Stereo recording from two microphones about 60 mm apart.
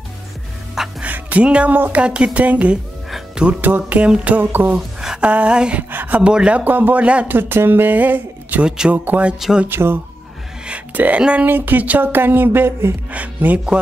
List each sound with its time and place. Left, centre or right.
1.0 s music: right
1.7 s speech: right
4.7 s speech: centre
5.8 s speech: right
6.2 s speech: centre
6.6 s speech: right
7.3 s speech: right
8.6 s speech: centre
8.9 s speech: right
9.7 s speech: right
10.7 s speech: right
11.4 s speech: right
13.1 s speech: right